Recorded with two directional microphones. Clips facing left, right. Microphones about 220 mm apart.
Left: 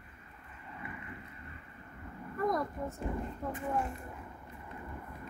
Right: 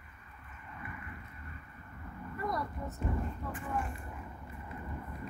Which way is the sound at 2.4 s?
45° left (ahead or behind).